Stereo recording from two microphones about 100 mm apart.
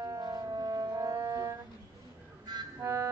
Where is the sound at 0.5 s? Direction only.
45° right (ahead or behind).